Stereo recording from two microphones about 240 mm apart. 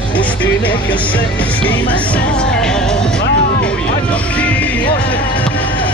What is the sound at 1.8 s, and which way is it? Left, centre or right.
Music, centre.